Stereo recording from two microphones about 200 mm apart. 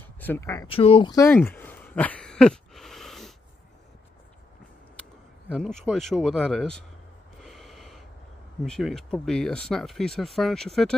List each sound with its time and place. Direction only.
0.0 s speech: 10° left (ahead or behind)
0.7 s speech: 25° left (ahead or behind)
1.2 s a sound: 10° left (ahead or behind)
5.5 s speech: centre (ahead or behind)
7.3 s gasp: centre (ahead or behind)
8.6 s speech: centre (ahead or behind)